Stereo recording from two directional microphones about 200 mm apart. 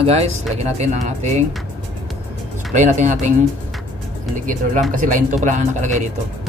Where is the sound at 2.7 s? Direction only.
35° right (ahead or behind).